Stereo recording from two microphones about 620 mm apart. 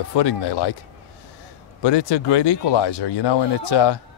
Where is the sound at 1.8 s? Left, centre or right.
Left.